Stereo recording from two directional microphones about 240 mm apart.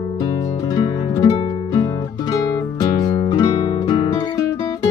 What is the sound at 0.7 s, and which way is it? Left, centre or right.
Music, centre.